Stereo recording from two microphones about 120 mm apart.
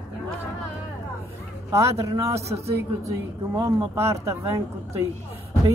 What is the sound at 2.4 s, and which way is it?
Speech, 60° right (ahead or behind).